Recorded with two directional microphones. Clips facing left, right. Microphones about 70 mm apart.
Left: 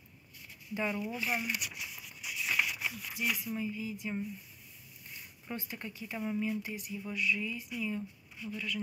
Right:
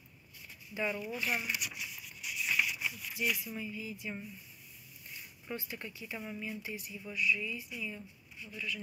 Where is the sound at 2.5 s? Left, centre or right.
Left.